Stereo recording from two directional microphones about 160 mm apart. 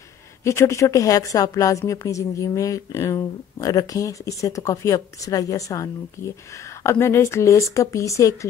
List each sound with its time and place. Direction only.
0.4 s a woman's voice: 15° left (ahead or behind)